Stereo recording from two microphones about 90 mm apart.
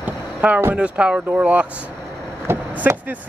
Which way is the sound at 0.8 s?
15° right (ahead or behind).